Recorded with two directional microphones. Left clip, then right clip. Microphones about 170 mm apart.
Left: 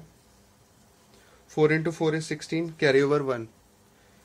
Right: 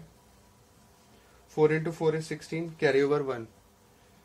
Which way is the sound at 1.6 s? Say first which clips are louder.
Left 2 dB; 40° left (ahead or behind).